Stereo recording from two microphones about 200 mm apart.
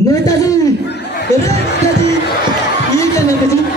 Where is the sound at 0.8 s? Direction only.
55° left (ahead or behind).